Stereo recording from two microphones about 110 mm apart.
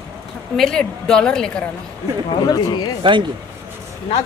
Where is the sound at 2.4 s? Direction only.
40° left (ahead or behind).